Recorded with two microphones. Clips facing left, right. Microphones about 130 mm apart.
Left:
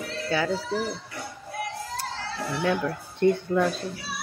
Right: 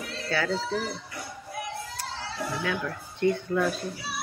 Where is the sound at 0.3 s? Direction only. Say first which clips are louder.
Left 2 dB; 15° left (ahead or behind).